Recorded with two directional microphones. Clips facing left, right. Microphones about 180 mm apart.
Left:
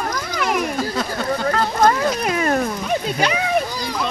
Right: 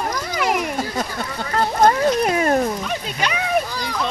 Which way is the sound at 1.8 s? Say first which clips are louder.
Right 3 dB; 35° right (ahead or behind).